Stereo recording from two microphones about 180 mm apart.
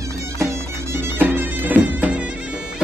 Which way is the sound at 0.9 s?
15° right (ahead or behind).